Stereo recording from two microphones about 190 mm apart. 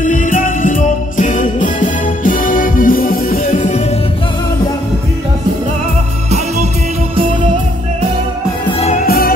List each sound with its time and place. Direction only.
0.0 s music: 45° left (ahead or behind)
9.0 s music: 55° left (ahead or behind)